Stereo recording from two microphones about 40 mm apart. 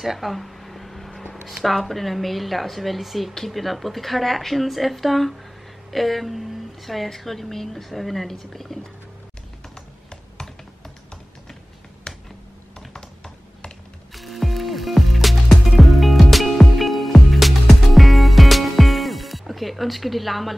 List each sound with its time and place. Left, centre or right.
0.0 s a sound: centre
1.6 s a woman's voice: centre
12.1 s finger snapping: centre
12.9 s computer keyboard: centre
14.1 s music: centre